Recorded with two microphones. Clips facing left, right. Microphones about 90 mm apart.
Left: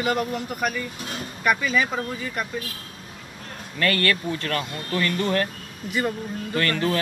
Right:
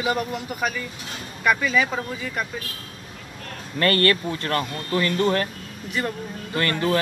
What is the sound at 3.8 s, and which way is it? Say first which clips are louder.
Speech: right 3 dB; 35° right (ahead or behind).